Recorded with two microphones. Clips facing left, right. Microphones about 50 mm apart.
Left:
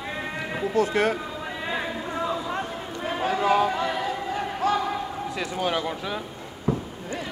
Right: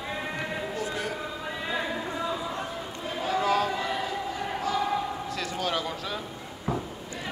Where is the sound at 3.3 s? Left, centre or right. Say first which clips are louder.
Left 3 dB; left.